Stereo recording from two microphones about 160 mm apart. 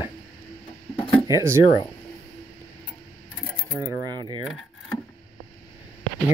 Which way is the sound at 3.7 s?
25° right (ahead or behind).